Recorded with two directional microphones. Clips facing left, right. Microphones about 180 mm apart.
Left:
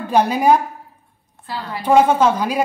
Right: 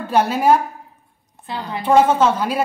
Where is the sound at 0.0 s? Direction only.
15° left (ahead or behind).